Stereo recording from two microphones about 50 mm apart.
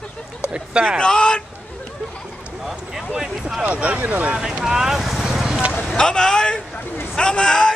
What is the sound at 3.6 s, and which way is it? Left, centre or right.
Speech, right.